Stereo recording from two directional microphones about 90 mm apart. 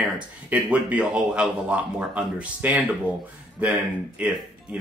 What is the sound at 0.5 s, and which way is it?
Speech, 15° right (ahead or behind).